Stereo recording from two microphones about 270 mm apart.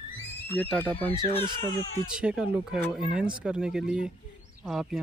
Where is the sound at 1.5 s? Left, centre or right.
Centre.